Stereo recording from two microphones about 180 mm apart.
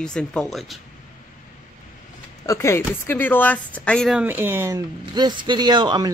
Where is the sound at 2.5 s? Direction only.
15° left (ahead or behind).